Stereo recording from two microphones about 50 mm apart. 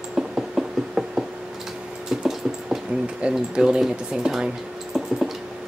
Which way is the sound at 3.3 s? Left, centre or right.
Centre.